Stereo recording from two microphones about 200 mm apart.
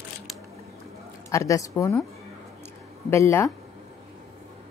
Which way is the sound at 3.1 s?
15° left (ahead or behind).